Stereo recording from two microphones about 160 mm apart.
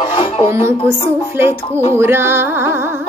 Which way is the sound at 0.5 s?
15° right (ahead or behind).